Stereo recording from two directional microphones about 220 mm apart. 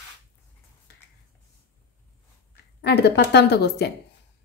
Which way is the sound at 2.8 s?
50° left (ahead or behind).